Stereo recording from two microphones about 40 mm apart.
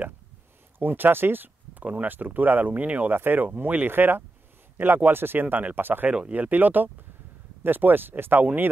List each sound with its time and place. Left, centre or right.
0.7 s speech: right
1.8 s speech: right
2.0 s speech: right
5.8 s speech: right
6.3 s speech: right